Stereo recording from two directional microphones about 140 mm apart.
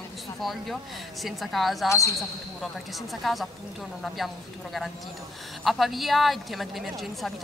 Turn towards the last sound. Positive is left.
turn(degrees=0)  # may be behind; listen again after turning